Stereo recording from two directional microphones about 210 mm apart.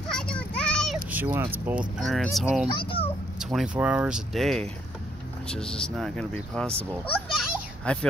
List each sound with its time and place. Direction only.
0.1 s children playing: 5° left (ahead or behind)
1.1 s speech: 10° right (ahead or behind)
2.7 s a child's voice: 25° left (ahead or behind)
3.3 s speech: centre (ahead or behind)
7.1 s children playing: centre (ahead or behind)